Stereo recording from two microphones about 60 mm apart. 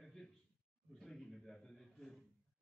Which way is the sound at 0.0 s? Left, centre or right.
Centre.